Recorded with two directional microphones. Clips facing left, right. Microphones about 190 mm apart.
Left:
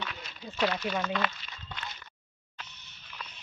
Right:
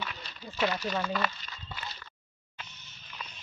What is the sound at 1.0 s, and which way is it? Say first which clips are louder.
Speech: even; centre (ahead or behind).